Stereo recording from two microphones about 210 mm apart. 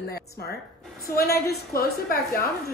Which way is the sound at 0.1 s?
50° left (ahead or behind).